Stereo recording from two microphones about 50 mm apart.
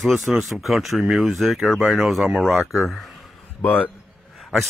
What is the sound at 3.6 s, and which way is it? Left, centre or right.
Speech, left.